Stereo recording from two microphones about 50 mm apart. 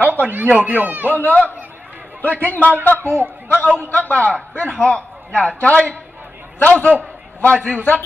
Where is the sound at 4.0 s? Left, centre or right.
Left.